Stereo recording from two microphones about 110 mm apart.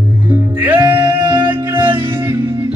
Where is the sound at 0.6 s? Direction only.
20° right (ahead or behind); by 1.9 s 45° right (ahead or behind).